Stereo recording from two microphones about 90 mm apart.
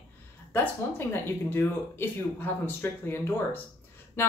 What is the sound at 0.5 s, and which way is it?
A woman's voice, 25° left (ahead or behind).